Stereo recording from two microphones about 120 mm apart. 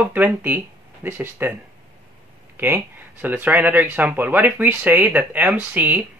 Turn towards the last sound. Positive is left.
turn(degrees=-15)  # may be behind; listen again after turning